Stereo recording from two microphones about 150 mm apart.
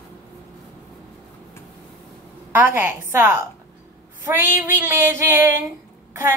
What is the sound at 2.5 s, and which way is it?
Music, 15° right (ahead or behind).